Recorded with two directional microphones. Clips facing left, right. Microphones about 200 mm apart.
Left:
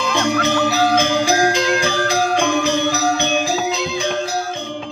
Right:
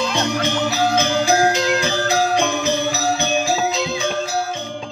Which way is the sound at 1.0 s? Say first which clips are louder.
Even; 15° left (ahead or behind).